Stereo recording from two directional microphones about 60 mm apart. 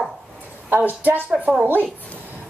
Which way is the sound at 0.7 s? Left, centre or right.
Right.